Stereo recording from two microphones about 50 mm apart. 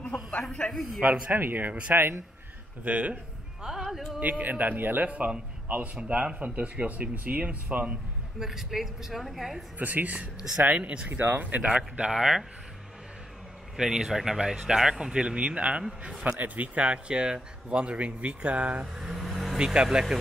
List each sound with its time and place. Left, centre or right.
0.4 s a man's voice: centre
1.3 s speech: right
2.8 s speech: right
3.6 s speech: centre
4.2 s speech: right
5.0 s speech: right
8.4 s a woman's voice: centre
9.8 s speech: right
11.1 s speech: right; by 12.4 s centre
13.7 s speech: centre
18.9 s speech: centre
19.2 s vehicle: centre
19.6 s speech: centre